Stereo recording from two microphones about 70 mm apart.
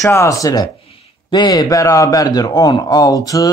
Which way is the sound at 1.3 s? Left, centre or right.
Left.